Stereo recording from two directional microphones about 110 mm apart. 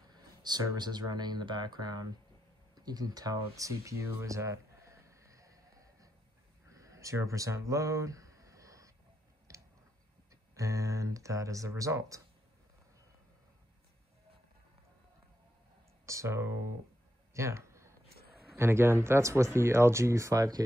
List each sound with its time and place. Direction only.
0.1 s speech: 40° right (ahead or behind)
2.7 s a sound: 35° right (ahead or behind)
10.5 s speech: 30° right (ahead or behind)
16.1 s speech: 25° right (ahead or behind)
17.3 s a sound: 25° right (ahead or behind)
18.5 s speech: 20° right (ahead or behind)